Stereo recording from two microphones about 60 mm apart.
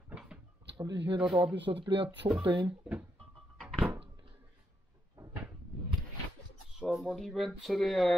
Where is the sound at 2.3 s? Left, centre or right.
Right.